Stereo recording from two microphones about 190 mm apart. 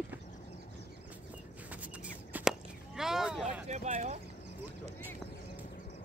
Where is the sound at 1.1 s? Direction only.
10° right (ahead or behind).